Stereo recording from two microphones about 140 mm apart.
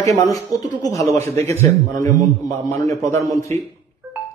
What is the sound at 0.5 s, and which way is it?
Speech, 65° right (ahead or behind).